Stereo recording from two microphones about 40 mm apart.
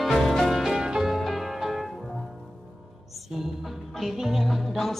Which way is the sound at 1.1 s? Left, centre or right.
Centre.